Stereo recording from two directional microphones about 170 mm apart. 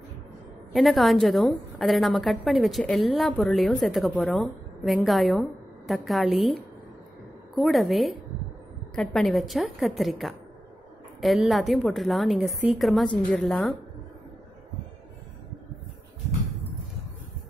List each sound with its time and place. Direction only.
0.7 s a woman's voice: centre (ahead or behind)
7.5 s a woman's voice: centre (ahead or behind)